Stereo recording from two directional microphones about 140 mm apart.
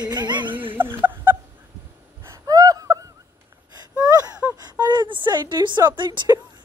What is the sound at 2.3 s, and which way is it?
Gasp, 25° right (ahead or behind).